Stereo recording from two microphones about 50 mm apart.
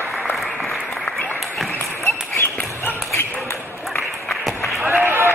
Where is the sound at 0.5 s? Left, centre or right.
Centre.